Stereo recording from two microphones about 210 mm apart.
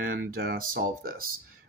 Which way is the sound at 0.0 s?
45° right (ahead or behind).